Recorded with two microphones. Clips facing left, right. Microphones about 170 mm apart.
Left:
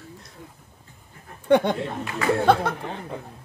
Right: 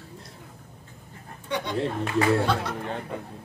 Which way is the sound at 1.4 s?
55° left (ahead or behind).